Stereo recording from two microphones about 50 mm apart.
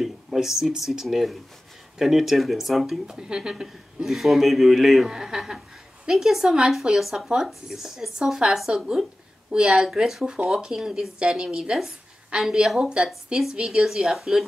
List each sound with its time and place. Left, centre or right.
0.0 s a man's voice: centre
3.2 s speech: centre
3.6 s a man's voice: centre
12.9 s speech: centre
14.1 s a man's voice: centre